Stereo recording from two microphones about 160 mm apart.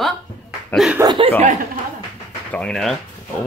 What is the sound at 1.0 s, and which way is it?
Speech, 30° right (ahead or behind).